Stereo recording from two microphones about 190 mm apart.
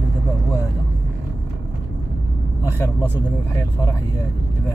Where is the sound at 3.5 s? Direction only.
15° left (ahead or behind).